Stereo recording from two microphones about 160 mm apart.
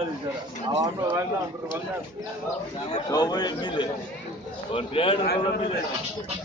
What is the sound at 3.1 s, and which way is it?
A man's voice, 25° left (ahead or behind).